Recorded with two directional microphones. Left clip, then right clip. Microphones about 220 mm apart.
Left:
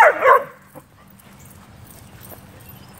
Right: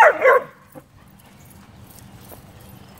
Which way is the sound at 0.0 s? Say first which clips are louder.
Left 1 dB; 25° right (ahead or behind).